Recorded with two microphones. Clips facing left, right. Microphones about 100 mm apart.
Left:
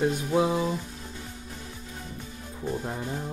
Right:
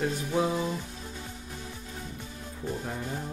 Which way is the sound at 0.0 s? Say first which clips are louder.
Left 4 dB; 20° left (ahead or behind).